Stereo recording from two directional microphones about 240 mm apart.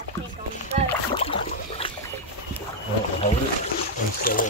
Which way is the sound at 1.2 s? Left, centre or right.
Left.